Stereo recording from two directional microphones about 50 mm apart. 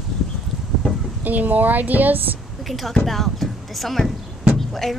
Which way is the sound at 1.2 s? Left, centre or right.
Right.